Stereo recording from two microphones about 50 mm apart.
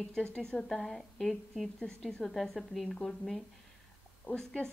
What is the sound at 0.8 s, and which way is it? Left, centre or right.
A woman's voice, centre.